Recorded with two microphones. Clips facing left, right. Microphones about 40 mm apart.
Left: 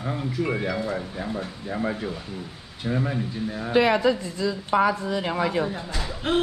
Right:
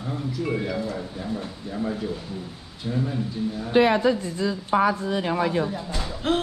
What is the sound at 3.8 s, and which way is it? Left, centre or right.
A woman's voice, left.